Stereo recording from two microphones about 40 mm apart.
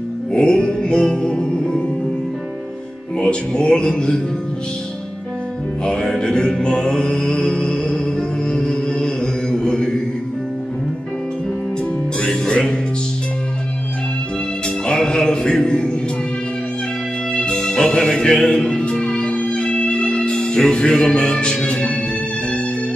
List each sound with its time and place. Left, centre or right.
0.3 s music: left
3.2 s music: left
5.9 s music: centre
12.2 s music: centre
14.9 s music: centre
17.4 s music: left